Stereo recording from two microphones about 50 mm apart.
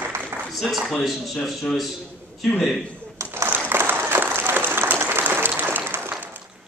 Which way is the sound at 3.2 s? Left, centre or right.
Right.